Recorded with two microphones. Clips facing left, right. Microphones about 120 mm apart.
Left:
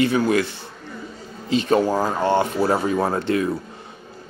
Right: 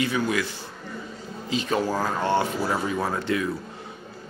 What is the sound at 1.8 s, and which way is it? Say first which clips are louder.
Speech: left 5 dB; 20° left (ahead or behind).